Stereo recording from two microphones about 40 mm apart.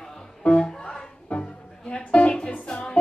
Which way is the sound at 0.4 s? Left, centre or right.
Left.